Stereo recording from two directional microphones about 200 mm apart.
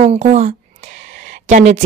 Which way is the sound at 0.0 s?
35° right (ahead or behind).